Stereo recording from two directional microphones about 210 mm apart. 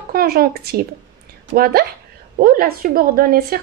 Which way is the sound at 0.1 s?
45° right (ahead or behind).